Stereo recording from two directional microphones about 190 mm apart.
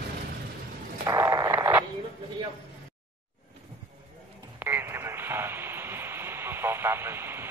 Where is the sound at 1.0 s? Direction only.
20° right (ahead or behind).